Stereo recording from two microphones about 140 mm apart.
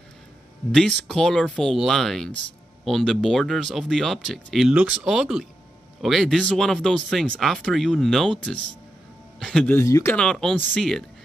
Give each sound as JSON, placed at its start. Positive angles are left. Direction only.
{"t": 0.7, "sound": "speech", "side_deg": 0}
{"t": 9.8, "sound": "speech", "side_deg": 20}
{"t": 10.1, "sound": "speech", "side_deg": 5}